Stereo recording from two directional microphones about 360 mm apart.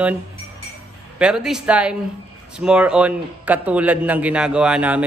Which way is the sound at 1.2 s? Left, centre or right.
Centre.